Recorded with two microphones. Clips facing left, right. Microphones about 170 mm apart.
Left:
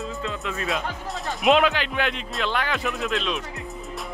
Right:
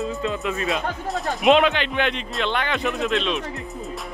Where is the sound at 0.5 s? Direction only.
Centre (ahead or behind).